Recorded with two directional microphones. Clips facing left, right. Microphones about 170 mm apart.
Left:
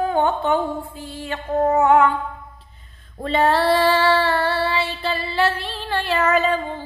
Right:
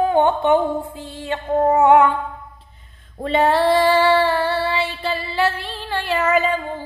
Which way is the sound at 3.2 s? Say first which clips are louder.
Right 1 dB; 15° right (ahead or behind).